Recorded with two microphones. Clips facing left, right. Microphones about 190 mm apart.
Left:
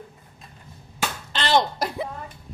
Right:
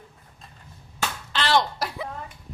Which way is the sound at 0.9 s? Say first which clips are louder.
Even; 20° left (ahead or behind).